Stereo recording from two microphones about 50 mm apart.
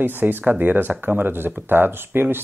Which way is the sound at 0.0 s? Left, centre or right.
Right.